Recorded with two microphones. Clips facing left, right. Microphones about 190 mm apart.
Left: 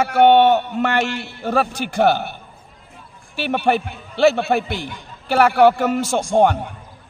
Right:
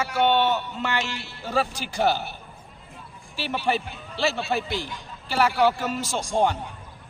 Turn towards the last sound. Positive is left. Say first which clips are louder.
# left 7 dB
turn(degrees=60)  # may be behind; listen again after turning